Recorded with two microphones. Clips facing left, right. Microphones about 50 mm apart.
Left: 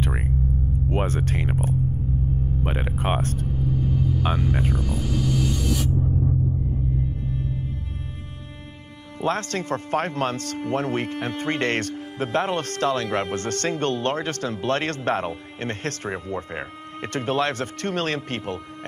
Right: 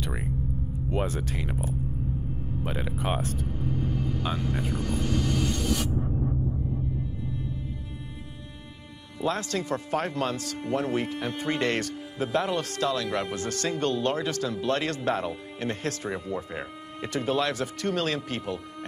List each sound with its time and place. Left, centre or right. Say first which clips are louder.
0.0 s a sound: left 6 dB; left
0.8 s speech: left 4 dB; left
4.4 s speech: left 5 dB; centre
4.7 s music: left 1 dB; centre
9.2 s speech: left 3 dB; left